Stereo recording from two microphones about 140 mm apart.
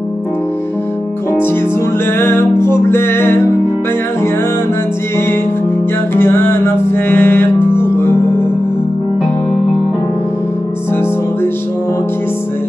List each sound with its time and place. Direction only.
2.1 s music: 15° left (ahead or behind)
6.1 s music: 15° left (ahead or behind)